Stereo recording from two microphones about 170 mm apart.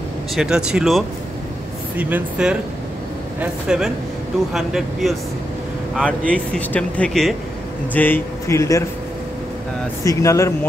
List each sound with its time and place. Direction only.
0.4 s speech: 5° right (ahead or behind); by 8.8 s 20° left (ahead or behind)
10.0 s speech: 20° left (ahead or behind)